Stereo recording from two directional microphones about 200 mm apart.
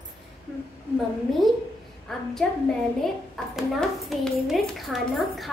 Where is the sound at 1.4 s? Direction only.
Centre (ahead or behind).